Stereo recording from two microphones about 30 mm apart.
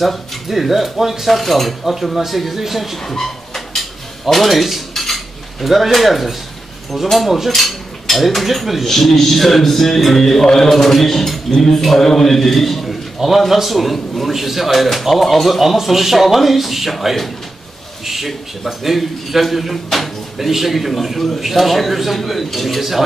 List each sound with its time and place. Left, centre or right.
0.5 s speech: centre
1.3 s speech: centre
3.0 s a sound: centre
4.3 s speech: centre
5.0 s cutlery: centre
5.9 s speech: centre
7.5 s cutlery: centre
8.8 s a man's voice: centre
10.4 s a man's voice: centre
10.7 s a man's voice: centre
13.5 s speech: centre